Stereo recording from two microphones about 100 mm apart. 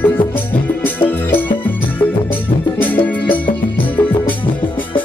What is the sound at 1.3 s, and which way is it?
Music, 20° left (ahead or behind).